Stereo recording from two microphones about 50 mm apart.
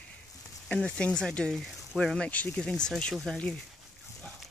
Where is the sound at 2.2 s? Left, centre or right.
Left.